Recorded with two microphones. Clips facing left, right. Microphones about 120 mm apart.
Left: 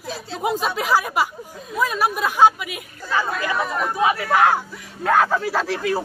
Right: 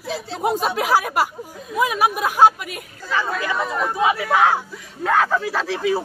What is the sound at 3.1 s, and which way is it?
Speech, 5° left (ahead or behind).